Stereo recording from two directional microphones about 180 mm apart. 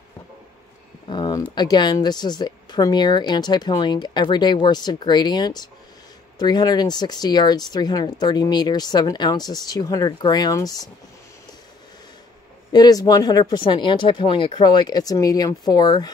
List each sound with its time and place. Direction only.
1.0 s a sound: 25° left (ahead or behind)
1.5 s speech: 25° left (ahead or behind)
12.7 s speech: 20° left (ahead or behind)